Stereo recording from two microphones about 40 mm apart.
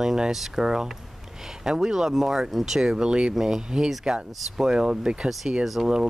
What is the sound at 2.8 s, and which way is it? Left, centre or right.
Speech, centre.